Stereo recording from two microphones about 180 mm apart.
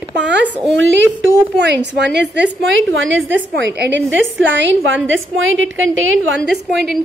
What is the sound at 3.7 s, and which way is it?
Speech, 75° right (ahead or behind).